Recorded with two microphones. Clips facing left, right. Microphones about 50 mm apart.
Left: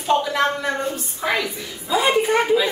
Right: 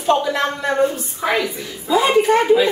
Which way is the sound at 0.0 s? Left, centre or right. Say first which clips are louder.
Right 2 dB; centre.